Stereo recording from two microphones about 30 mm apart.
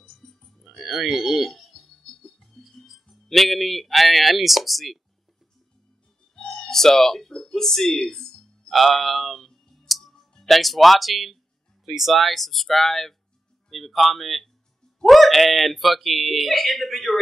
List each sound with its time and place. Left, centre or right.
0.1 s music: left
0.7 s a sound: centre
1.5 s music: centre
2.6 s speech: centre
6.5 s speech: centre
9.8 s music: centre
10.4 s speech: centre
11.8 s speech: centre
12.1 s speech: centre